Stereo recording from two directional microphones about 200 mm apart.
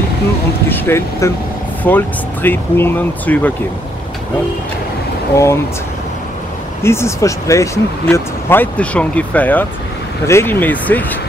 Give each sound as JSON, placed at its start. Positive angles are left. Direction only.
{"t": 0.7, "sound": "speech", "side_deg": 10}
{"t": 5.3, "sound": "speech", "side_deg": 15}
{"t": 6.8, "sound": "speech", "side_deg": 15}